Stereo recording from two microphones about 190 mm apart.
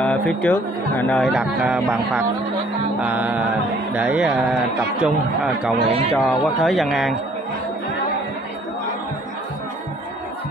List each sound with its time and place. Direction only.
0.0 s speech: 5° left (ahead or behind)
5.9 s a man's voice: 30° right (ahead or behind)
6.1 s speech: centre (ahead or behind)